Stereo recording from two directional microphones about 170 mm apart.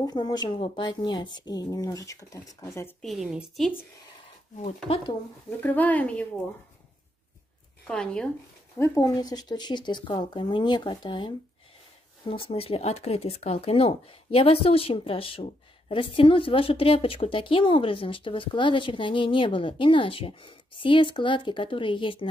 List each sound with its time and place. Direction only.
0.0 s a woman's voice: 25° left (ahead or behind)
3.0 s a woman's voice: centre (ahead or behind)
4.6 s speech: 35° left (ahead or behind)
5.6 s speech: 10° left (ahead or behind)
7.8 s a woman's voice: 5° left (ahead or behind)
8.7 s a woman's voice: 15° left (ahead or behind)